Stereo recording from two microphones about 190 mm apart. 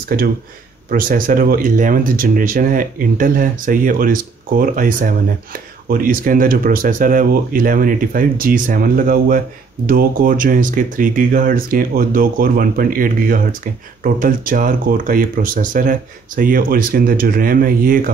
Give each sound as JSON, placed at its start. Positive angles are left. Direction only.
{"t": 0.8, "sound": "speech", "side_deg": -45}